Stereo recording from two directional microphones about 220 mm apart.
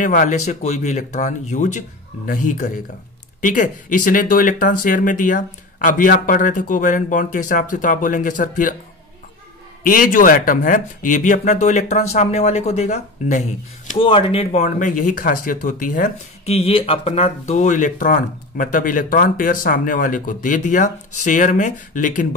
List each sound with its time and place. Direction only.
0.0 s speech: 35° left (ahead or behind)
9.8 s speech: 40° left (ahead or behind)